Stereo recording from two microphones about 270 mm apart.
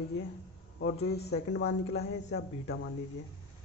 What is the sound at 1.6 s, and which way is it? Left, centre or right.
Speech, left.